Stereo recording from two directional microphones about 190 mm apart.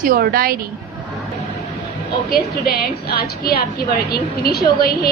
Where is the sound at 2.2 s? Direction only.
50° left (ahead or behind).